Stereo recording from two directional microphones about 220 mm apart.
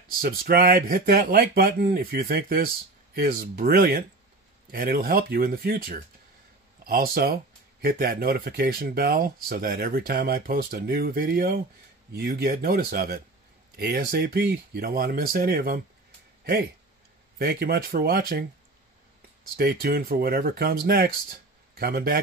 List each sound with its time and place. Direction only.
0.2 s speech: 45° right (ahead or behind)
17.4 s speech: 50° right (ahead or behind)
19.5 s speech: 45° right (ahead or behind)